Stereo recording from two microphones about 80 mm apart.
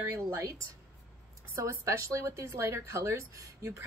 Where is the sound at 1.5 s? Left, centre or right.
Right.